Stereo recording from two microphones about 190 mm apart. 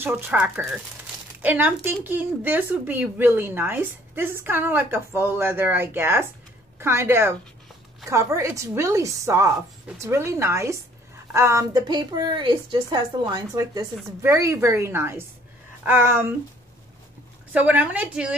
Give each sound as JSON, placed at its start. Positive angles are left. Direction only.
{"t": 0.0, "sound": "a woman's voice", "side_deg": -10}
{"t": 17.5, "sound": "speech", "side_deg": -10}